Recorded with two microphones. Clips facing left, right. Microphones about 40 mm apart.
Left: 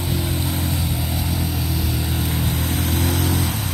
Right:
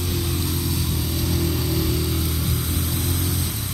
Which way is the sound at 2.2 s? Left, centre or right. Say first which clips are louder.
Left 3 dB; left.